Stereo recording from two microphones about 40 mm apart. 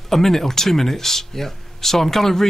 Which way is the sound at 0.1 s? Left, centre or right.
Centre.